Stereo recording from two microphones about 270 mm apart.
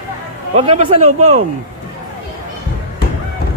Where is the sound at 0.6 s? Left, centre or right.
Right.